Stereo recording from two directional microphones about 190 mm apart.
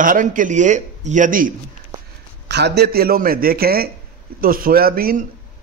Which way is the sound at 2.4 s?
60° right (ahead or behind).